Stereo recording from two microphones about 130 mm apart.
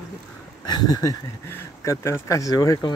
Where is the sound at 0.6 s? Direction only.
30° left (ahead or behind).